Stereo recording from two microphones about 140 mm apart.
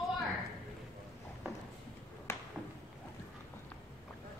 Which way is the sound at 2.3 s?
15° left (ahead or behind).